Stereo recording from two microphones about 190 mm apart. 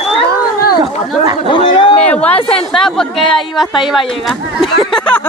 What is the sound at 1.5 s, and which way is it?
Speech, 25° left (ahead or behind).